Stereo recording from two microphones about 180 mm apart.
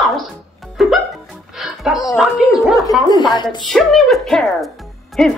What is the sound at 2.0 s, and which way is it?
Speech, 5° right (ahead or behind).